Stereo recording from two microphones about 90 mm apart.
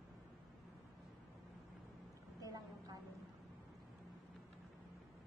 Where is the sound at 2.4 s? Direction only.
40° right (ahead or behind).